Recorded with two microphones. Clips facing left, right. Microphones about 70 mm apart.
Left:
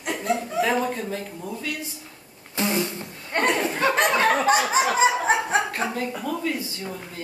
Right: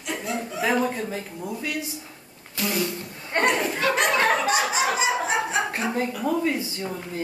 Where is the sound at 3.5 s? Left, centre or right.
Left.